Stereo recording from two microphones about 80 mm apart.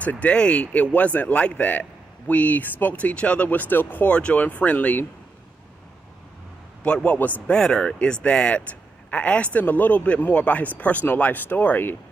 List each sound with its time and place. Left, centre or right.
0.0 s a man's voice: centre
6.8 s a man's voice: centre